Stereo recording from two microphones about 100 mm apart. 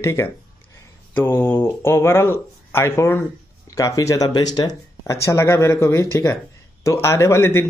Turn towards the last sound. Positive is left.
turn(degrees=30)  # may be behind; listen again after turning